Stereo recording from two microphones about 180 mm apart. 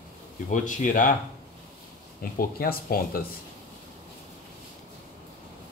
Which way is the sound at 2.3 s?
55° left (ahead or behind).